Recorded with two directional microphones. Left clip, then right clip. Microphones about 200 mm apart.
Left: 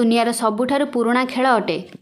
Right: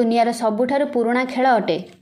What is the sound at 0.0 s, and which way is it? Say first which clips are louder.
A woman's voice: even; 10° left (ahead or behind).